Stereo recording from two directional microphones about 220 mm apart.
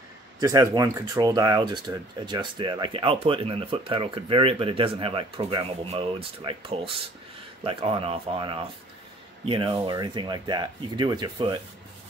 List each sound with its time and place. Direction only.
0.4 s speech: 15° right (ahead or behind)